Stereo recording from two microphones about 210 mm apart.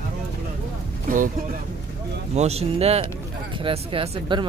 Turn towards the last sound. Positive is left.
turn(degrees=-25)  # may be behind; listen again after turning